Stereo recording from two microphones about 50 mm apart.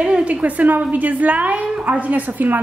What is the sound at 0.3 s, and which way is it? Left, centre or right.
A woman's voice, right.